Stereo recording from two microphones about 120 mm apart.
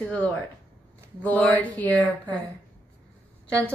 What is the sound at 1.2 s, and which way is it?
Speech, 15° left (ahead or behind).